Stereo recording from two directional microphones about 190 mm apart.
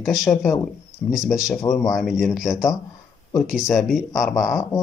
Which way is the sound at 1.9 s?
Centre (ahead or behind).